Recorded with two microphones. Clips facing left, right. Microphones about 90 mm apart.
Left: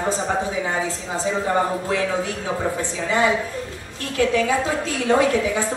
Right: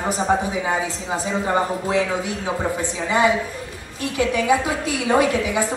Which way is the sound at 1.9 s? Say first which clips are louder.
Right 1 dB; 20° right (ahead or behind).